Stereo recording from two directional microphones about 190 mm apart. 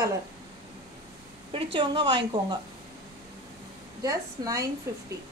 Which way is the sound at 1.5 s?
25° right (ahead or behind).